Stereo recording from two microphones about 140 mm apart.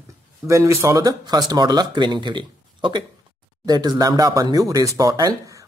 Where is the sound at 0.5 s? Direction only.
20° right (ahead or behind).